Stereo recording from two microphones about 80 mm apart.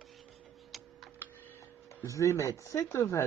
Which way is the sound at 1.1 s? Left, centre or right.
Left.